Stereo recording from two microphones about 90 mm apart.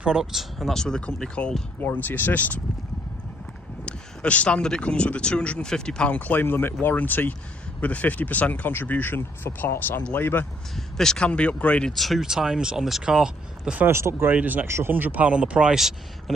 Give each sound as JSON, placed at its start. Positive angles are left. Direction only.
{"t": 0.0, "sound": "speech", "side_deg": -5}
{"t": 1.8, "sound": "speech", "side_deg": 20}
{"t": 3.8, "sound": "speech", "side_deg": 15}
{"t": 11.0, "sound": "speech", "side_deg": 10}
{"t": 11.9, "sound": "speech", "side_deg": 0}
{"t": 13.7, "sound": "speech", "side_deg": -25}